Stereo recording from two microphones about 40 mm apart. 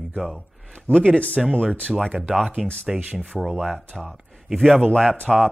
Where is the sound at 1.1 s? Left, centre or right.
Left.